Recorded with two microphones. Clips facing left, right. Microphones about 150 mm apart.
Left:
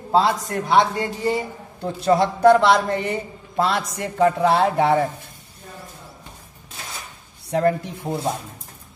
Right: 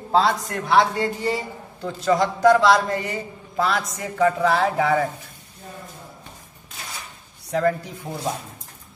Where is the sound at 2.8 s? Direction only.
60° left (ahead or behind).